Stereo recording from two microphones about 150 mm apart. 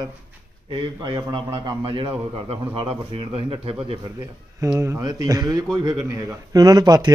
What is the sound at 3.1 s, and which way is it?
Speech, 40° right (ahead or behind).